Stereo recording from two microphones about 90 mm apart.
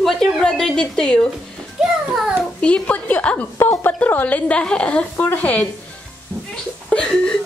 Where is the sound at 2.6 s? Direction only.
15° left (ahead or behind).